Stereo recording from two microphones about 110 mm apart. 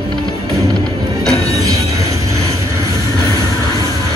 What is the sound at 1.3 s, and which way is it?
Train, 30° right (ahead or behind).